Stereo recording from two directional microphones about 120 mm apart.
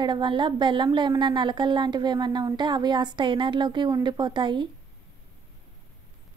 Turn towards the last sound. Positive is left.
turn(degrees=-40)  # may be behind; listen again after turning